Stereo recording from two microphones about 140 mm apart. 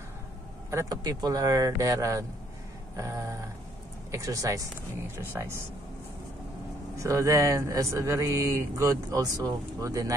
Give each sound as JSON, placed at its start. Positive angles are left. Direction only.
{"t": 0.7, "sound": "speech", "side_deg": -25}
{"t": 7.0, "sound": "speech", "side_deg": -20}